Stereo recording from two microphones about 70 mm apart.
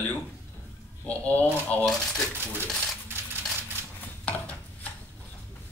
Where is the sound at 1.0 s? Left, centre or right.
Left.